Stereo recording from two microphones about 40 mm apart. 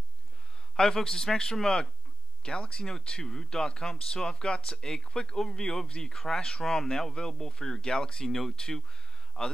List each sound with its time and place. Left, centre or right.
0.7 s speech: centre
8.3 s speech: centre
8.5 s speech: centre